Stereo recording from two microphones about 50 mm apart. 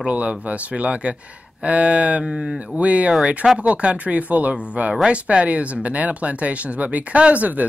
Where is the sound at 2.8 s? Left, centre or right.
Right.